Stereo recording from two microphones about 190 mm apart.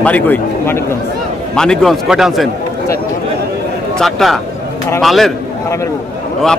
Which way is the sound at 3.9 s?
Centre (ahead or behind).